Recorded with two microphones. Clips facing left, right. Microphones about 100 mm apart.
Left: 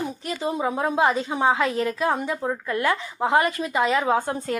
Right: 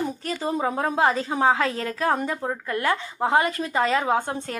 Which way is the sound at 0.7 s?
35° right (ahead or behind).